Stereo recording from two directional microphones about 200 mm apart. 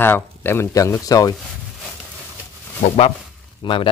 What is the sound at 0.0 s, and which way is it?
Speech, 10° left (ahead or behind).